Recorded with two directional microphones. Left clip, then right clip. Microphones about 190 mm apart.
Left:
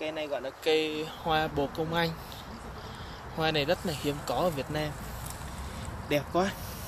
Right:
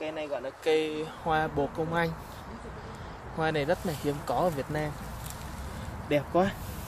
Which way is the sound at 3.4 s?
15° right (ahead or behind).